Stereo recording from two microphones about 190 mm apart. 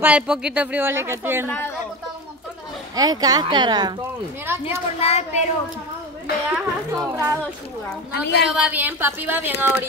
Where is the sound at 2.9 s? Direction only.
20° right (ahead or behind).